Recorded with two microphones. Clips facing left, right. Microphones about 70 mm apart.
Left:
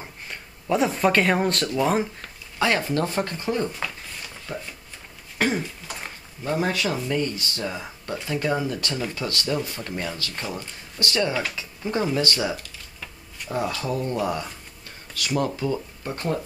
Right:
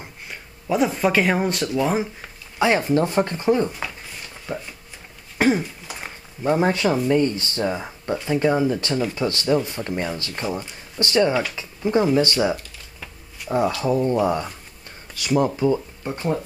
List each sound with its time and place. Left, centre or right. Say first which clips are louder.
0.0 s speech: even; centre
2.6 s speech: right 4 dB; right
5.4 s a sound: right 5 dB; centre
6.4 s speech: right 5 dB; right
12.5 s typing: right 1 dB; centre
13.8 s speech: right 6 dB; right